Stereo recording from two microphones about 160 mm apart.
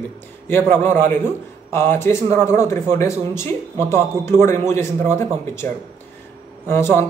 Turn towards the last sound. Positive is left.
turn(degrees=15)  # may be behind; listen again after turning